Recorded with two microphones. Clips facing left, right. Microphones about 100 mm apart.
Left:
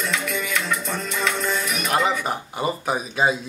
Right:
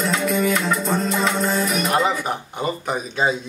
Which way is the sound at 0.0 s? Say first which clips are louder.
Right 6 dB; 35° right (ahead or behind).